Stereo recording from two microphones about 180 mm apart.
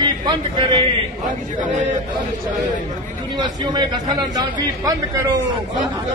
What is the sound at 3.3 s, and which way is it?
Speech, 25° right (ahead or behind).